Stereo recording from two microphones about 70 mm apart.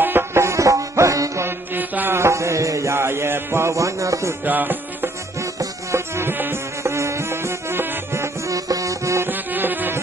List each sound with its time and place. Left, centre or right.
0.0 s music: right
1.4 s music: right
2.1 s mantra: right
4.5 s music: right
5.4 s music: right
6.8 s music: right
8.5 s music: right
9.2 s music: right